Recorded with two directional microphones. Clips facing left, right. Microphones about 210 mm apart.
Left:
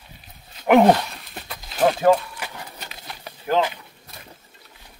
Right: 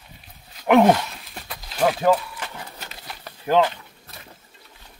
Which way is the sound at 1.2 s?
Centre (ahead or behind).